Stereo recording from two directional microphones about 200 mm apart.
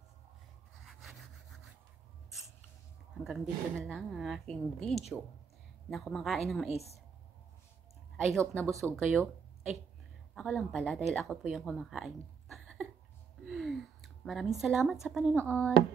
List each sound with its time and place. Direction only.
0.8 s sawing: centre (ahead or behind)
3.3 s speech: centre (ahead or behind)
6.7 s a woman's voice: 30° left (ahead or behind)
8.4 s speech: 5° left (ahead or behind)
10.3 s speech: centre (ahead or behind)
15.4 s speech: 5° left (ahead or behind)